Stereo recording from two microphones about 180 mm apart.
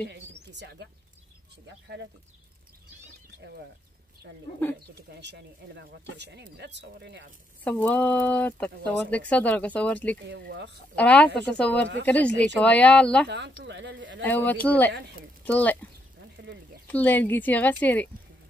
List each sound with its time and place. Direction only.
0.1 s speech: 70° right (ahead or behind)
5.1 s speech: 70° right (ahead or behind)
7.6 s speech: 10° left (ahead or behind)
10.2 s speech: 70° right (ahead or behind)
11.0 s speech: 10° left (ahead or behind)
13.3 s speech: 75° right (ahead or behind)
14.2 s speech: 10° left (ahead or behind)
16.2 s a sound: 70° right (ahead or behind)
16.8 s speech: 10° left (ahead or behind)